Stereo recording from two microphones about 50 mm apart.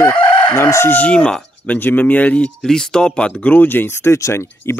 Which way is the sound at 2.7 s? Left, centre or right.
Centre.